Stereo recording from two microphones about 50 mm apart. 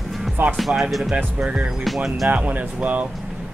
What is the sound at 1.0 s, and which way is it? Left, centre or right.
Speech, right.